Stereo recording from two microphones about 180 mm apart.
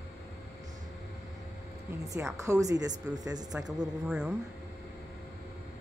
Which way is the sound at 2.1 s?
20° right (ahead or behind).